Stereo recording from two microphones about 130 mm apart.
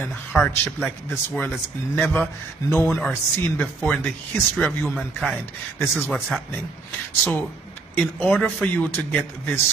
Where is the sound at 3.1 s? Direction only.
15° left (ahead or behind); by 6.4 s centre (ahead or behind).